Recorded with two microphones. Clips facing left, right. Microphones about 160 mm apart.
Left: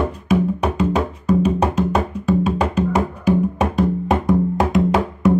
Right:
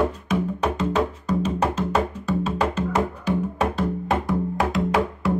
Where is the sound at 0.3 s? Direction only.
10° left (ahead or behind).